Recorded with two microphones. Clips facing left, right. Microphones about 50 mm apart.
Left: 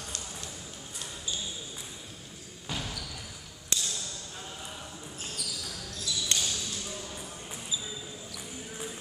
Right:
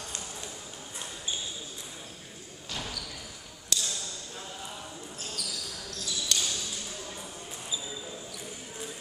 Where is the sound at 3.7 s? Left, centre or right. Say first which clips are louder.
Right 1 dB; left.